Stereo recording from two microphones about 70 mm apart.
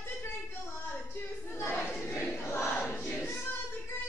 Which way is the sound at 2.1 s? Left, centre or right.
Left.